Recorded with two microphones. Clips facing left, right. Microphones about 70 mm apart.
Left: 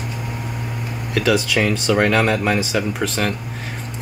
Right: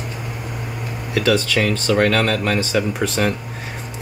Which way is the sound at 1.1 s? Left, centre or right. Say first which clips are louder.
Even; centre.